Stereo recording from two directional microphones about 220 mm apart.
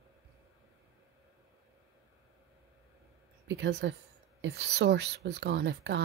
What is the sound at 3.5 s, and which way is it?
A woman's voice, 50° right (ahead or behind).